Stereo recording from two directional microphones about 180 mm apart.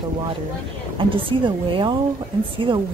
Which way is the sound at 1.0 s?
30° right (ahead or behind).